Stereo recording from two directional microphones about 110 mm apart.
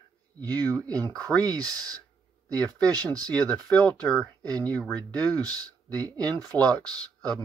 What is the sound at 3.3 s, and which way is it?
Speech, 10° left (ahead or behind).